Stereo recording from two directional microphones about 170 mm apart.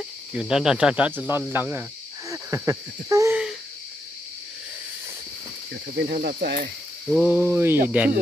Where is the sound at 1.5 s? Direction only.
10° right (ahead or behind).